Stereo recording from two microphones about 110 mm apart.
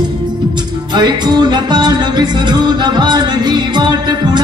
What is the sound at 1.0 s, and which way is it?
Music, 40° right (ahead or behind).